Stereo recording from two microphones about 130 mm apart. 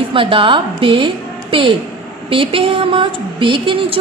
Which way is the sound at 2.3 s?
45° right (ahead or behind).